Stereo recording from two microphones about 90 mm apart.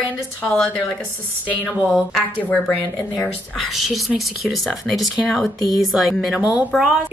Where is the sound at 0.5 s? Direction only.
5° left (ahead or behind).